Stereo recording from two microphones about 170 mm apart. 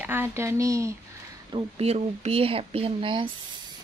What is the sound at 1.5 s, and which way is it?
Speech, 35° right (ahead or behind).